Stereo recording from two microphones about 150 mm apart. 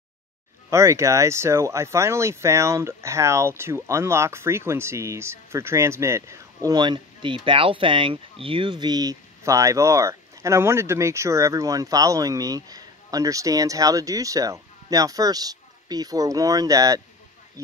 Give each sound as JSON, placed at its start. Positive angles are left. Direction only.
{"t": 0.7, "sound": "speech", "side_deg": -20}